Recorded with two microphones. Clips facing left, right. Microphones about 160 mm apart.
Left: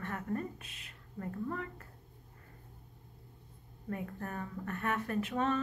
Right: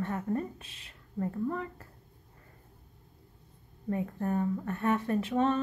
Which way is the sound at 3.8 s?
25° right (ahead or behind).